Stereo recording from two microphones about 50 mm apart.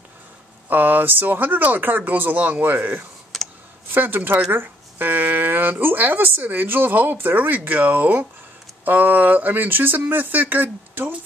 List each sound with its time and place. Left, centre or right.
0.7 s speech: right
3.3 s clicking: centre
3.9 s speech: right